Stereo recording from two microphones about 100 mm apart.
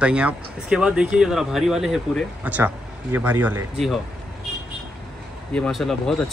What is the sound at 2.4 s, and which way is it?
Speech, 15° right (ahead or behind).